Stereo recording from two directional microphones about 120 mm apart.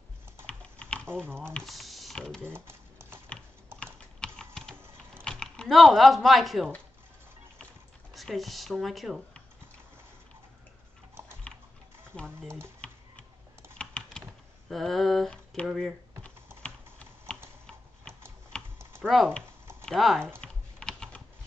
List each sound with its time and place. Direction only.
0.5 s typing: 10° left (ahead or behind)
1.2 s speech: 20° right (ahead or behind)
1.5 s speech: centre (ahead or behind)
2.5 s typewriter: 20° right (ahead or behind)
3.8 s typing: 5° left (ahead or behind)
5.2 s speech: 5° left (ahead or behind)
8.1 s speech: centre (ahead or behind)
12.1 s speech: 5° left (ahead or behind)
12.4 s speech: 20° right (ahead or behind)
13.7 s typing: 10° left (ahead or behind)
14.7 s speech: centre (ahead or behind)
18.5 s typing: 10° left (ahead or behind)
19.0 s speech: 5° left (ahead or behind)
20.3 s typing: 5° left (ahead or behind)